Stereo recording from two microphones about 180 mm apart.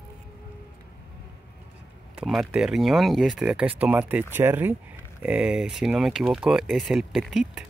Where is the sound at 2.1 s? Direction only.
Centre (ahead or behind).